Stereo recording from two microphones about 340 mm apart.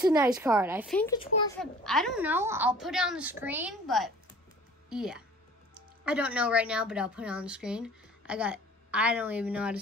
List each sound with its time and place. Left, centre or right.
0.0 s a woman's voice: centre
1.6 s a woman's voice: centre